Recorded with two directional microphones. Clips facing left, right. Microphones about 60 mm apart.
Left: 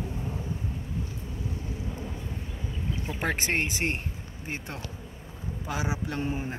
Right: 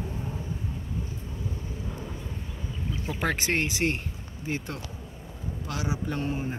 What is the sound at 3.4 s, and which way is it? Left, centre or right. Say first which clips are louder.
Speech: right 2 dB; left.